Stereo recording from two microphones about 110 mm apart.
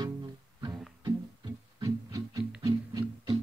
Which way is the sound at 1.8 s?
35° right (ahead or behind).